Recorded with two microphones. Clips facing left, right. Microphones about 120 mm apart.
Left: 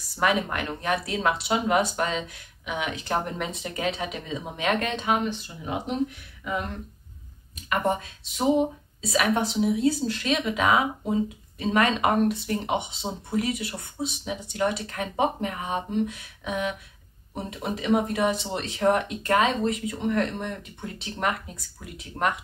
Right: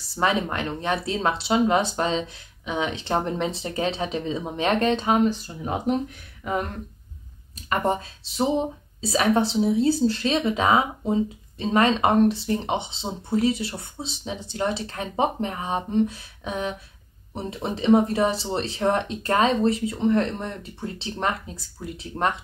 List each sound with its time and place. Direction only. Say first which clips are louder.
0.1 s speech: right 1 dB; 30° right (ahead or behind)
7.5 s speech: right 1 dB; 35° right (ahead or behind)